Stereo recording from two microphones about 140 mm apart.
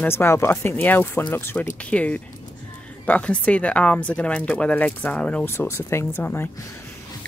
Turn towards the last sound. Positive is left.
turn(degrees=15)  # may be behind; listen again after turning